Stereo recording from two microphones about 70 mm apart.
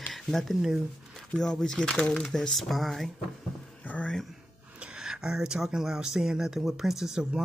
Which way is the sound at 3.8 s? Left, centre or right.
Centre.